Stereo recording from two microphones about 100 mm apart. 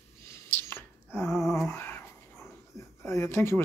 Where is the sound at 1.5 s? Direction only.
25° left (ahead or behind).